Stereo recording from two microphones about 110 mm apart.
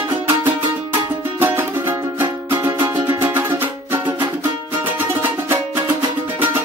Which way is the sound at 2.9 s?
45° right (ahead or behind).